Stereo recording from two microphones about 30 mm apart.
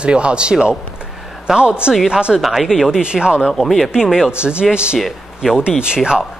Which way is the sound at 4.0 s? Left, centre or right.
Centre.